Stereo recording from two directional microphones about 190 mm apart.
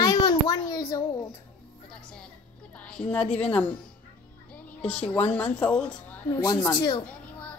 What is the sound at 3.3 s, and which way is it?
Speech, 5° left (ahead or behind).